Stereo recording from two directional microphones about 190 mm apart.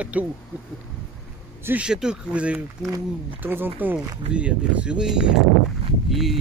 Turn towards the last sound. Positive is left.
turn(degrees=0)  # may be behind; listen again after turning